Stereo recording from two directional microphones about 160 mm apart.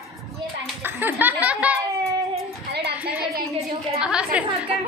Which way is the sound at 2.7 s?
90° right.